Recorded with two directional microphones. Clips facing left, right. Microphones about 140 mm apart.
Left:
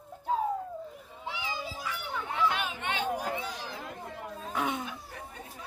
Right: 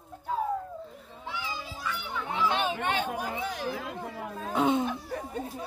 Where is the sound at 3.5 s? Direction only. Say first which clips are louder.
Right 6 dB; 75° right (ahead or behind); by 4.5 s 90° right.